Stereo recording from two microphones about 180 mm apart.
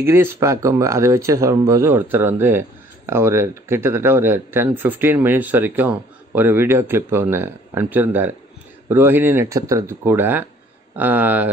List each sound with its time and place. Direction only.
0.0 s speech: 15° right (ahead or behind)